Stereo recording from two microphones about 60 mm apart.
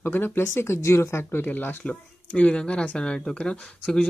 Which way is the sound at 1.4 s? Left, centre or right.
Left.